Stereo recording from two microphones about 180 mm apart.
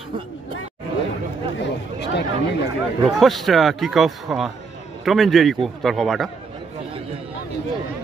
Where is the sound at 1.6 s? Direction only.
75° left (ahead or behind).